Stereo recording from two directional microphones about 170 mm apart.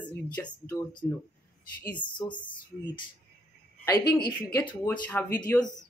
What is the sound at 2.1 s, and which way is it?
Speech, 25° left (ahead or behind).